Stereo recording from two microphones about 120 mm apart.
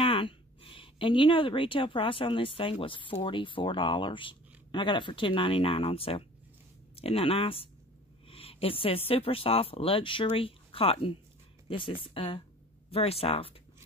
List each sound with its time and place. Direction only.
0.0 s a woman's voice: 50° left (ahead or behind)